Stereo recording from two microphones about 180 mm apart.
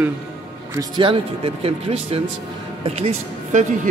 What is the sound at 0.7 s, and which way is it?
A man's voice, 25° right (ahead or behind).